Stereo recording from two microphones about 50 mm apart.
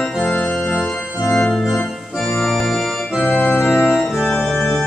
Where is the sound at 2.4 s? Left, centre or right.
Centre.